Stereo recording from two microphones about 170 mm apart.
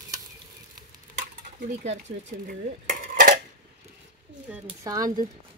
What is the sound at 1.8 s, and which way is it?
Dishes, 45° right (ahead or behind).